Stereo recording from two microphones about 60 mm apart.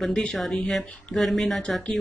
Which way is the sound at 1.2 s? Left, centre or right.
Centre.